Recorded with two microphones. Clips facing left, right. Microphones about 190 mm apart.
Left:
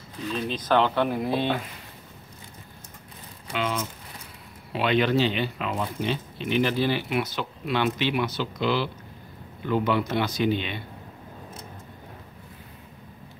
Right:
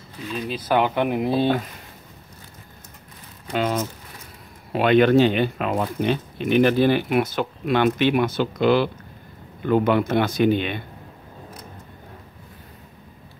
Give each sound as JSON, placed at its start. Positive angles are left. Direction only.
{"t": 0.5, "sound": "speech", "side_deg": -10}
{"t": 3.5, "sound": "speech", "side_deg": -45}